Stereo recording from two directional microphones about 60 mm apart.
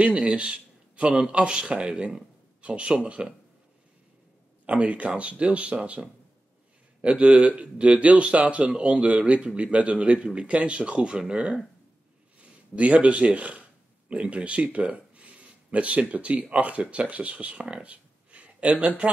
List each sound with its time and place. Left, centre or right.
0.0 s speech: centre
4.6 s speech: right